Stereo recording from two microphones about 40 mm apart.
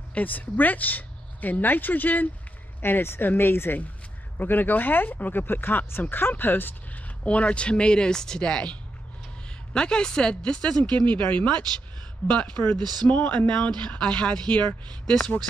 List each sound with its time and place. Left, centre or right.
0.1 s speech: left
2.8 s speech: left
4.4 s speech: left
5.4 s speech: left
7.2 s speech: left
9.8 s speech: left
12.3 s speech: left